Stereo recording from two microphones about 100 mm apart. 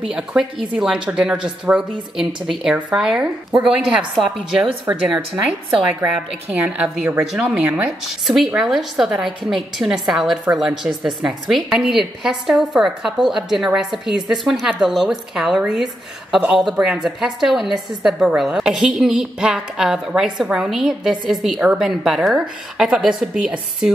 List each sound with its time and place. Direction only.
0.0 s a woman's voice: 5° right (ahead or behind)
4.9 s a woman's voice: 20° right (ahead or behind)
5.3 s a woman's voice: 10° right (ahead or behind)